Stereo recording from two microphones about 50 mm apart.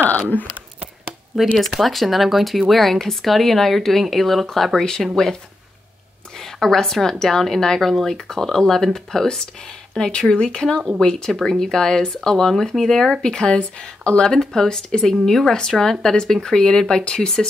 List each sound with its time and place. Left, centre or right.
1.3 s a woman's voice: centre
13.2 s a woman's voice: centre